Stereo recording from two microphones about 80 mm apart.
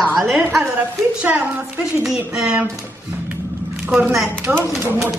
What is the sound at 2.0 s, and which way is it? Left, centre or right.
Speech, centre.